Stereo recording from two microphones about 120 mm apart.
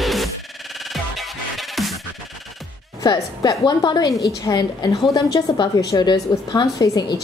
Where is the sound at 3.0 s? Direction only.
35° left (ahead or behind).